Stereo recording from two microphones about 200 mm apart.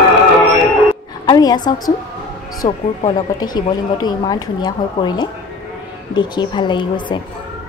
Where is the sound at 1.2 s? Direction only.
20° left (ahead or behind).